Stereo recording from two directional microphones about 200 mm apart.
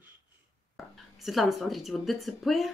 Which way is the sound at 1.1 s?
Centre (ahead or behind).